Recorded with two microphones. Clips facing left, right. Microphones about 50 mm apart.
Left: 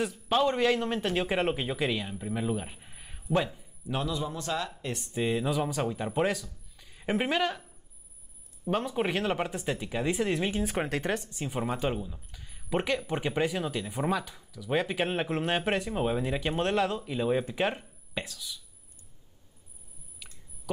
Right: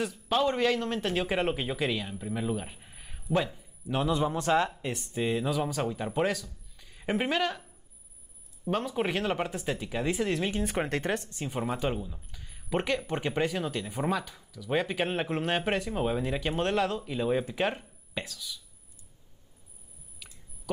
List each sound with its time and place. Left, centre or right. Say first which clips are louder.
0.0 s a man's voice: left 1 dB; centre
4.0 s speech: right 7 dB; right
4.9 s speech: left 2 dB; centre
8.6 s speech: even; centre